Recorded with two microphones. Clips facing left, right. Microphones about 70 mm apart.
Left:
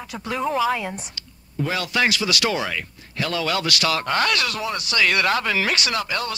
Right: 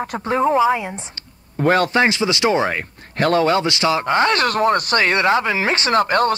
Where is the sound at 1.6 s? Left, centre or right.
Right.